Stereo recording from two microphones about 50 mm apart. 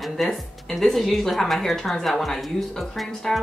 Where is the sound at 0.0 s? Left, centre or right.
Centre.